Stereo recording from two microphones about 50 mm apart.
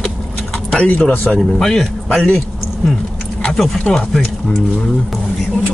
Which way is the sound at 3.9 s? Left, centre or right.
Centre.